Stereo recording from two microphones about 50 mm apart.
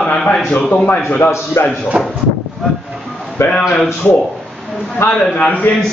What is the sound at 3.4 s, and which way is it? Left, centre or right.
Speech, left.